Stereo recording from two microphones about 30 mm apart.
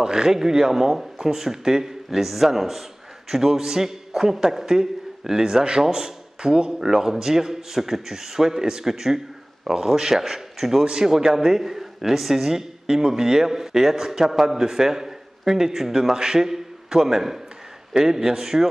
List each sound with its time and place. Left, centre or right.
0.0 s a man's voice: right